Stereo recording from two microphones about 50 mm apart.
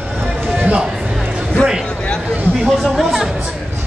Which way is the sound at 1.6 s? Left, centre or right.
Left.